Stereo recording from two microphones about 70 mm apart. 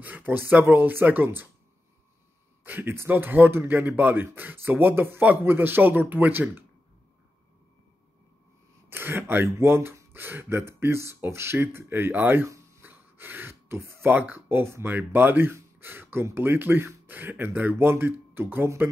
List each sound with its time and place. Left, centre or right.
0.0 s speech: right
2.6 s speech: right
8.9 s speech: right
12.4 s a sound: right
12.8 s a sound: right
14.1 s speech: right